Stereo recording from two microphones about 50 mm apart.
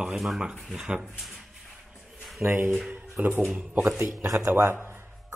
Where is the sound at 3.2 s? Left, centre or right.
Right.